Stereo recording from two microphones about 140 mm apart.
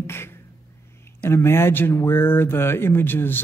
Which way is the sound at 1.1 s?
20° left (ahead or behind).